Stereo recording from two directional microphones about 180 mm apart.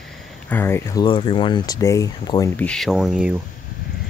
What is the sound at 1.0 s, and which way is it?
Speech, 25° left (ahead or behind).